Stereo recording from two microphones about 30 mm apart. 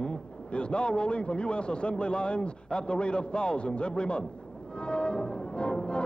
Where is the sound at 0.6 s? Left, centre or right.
Left.